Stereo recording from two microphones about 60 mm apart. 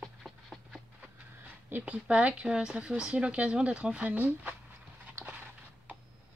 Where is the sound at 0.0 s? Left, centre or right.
Centre.